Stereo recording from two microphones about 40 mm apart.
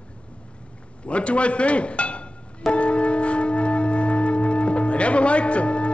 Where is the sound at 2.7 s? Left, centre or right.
Left.